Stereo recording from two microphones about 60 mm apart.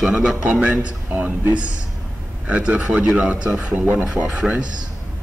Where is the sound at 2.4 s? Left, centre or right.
Right.